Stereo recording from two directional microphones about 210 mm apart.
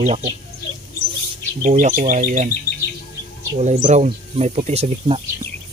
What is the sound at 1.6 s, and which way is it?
Speech, 35° right (ahead or behind).